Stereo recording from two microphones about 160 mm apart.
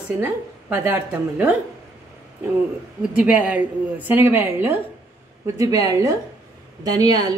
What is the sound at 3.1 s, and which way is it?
A woman's voice, 10° right (ahead or behind).